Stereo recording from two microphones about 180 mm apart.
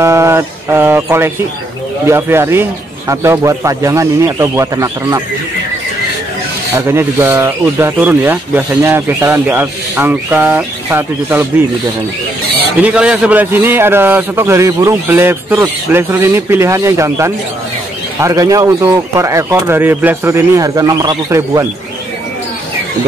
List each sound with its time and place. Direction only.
0.0 s speech: 15° right (ahead or behind)
6.7 s speech: 15° right (ahead or behind)
12.8 s speech: 5° right (ahead or behind)